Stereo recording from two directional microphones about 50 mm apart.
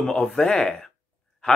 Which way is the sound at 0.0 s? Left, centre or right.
Centre.